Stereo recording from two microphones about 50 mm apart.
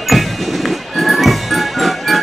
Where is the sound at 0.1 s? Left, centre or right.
Centre.